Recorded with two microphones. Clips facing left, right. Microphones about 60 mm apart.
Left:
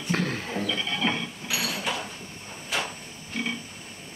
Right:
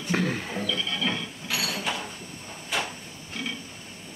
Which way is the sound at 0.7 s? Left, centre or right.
Left.